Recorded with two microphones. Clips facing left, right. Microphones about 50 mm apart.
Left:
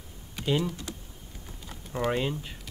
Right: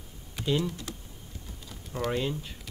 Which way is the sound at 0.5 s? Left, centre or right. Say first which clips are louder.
Left 1 dB; centre.